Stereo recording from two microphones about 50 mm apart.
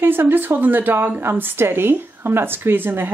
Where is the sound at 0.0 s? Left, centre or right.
Right.